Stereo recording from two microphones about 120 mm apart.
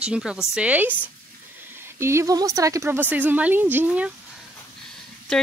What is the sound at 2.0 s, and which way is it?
A woman's voice, 25° right (ahead or behind).